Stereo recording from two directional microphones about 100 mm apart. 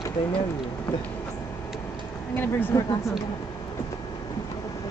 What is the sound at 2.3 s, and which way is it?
Speech, 20° left (ahead or behind).